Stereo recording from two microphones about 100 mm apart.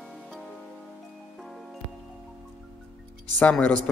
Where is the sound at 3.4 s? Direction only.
15° left (ahead or behind).